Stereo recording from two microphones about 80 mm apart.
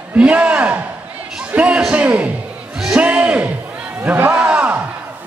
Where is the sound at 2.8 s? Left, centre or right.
Centre.